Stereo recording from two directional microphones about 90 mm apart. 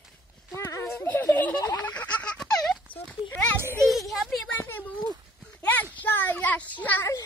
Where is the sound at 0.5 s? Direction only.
35° left (ahead or behind); by 2.8 s 10° left (ahead or behind).